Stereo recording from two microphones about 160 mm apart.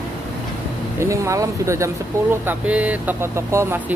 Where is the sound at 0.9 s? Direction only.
20° right (ahead or behind).